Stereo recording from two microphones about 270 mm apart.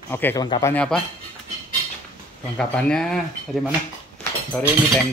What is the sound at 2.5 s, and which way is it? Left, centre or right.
Speech, centre.